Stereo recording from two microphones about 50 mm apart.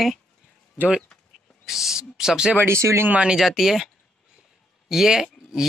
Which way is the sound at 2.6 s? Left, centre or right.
Right.